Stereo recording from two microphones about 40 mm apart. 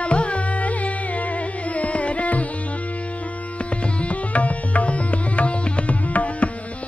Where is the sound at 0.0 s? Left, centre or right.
Left.